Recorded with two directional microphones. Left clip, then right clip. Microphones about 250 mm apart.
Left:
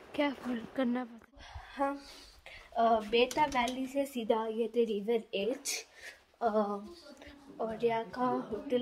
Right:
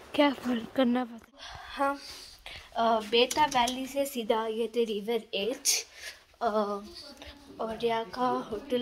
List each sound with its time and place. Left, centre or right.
0.1 s speech: centre
1.4 s a sound: centre
2.7 s a woman's voice: centre